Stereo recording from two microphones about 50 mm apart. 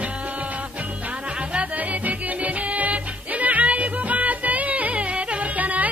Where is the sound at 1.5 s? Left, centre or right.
Right.